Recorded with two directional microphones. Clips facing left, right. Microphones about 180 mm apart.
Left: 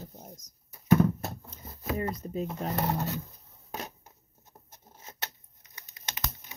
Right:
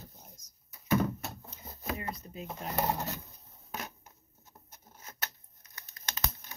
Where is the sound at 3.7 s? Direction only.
35° left (ahead or behind).